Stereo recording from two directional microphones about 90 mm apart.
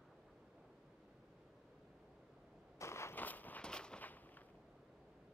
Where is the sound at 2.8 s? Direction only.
30° left (ahead or behind); by 4.2 s 15° left (ahead or behind).